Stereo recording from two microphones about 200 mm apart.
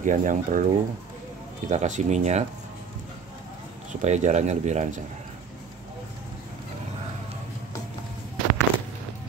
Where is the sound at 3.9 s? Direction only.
35° right (ahead or behind).